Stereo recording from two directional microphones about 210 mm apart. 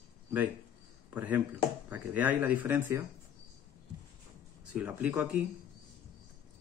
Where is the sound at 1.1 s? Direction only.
5° right (ahead or behind).